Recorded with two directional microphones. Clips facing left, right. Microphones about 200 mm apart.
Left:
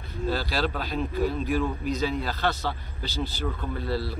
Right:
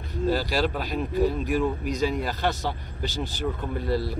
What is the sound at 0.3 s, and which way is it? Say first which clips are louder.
A man's voice: right 3 dB; 15° right (ahead or behind).